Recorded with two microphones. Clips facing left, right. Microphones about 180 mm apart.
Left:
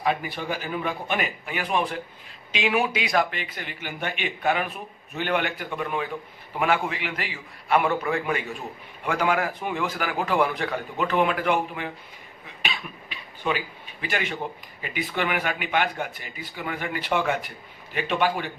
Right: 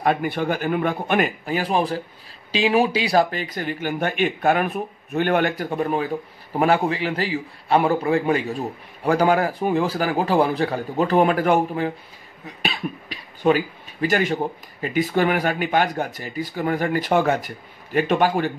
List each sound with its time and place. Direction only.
0.0 s a man's voice: 55° right (ahead or behind)
1.4 s a man's voice: 35° right (ahead or behind)